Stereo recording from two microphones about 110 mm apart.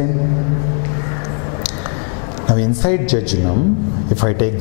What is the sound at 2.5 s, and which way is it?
A man's voice, 10° left (ahead or behind).